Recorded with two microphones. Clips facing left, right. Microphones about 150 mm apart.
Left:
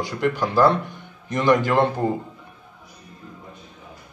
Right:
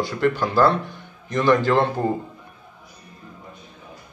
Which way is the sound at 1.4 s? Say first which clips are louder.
Right 1 dB; 15° left (ahead or behind).